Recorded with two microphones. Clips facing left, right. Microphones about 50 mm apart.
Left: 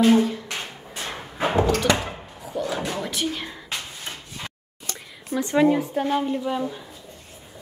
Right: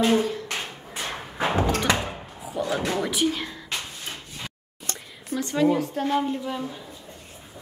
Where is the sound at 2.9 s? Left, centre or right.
Centre.